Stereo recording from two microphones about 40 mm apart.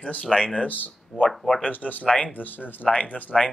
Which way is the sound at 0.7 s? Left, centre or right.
Left.